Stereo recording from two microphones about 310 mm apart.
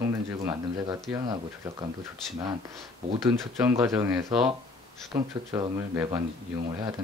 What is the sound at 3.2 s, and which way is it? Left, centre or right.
Speech, centre.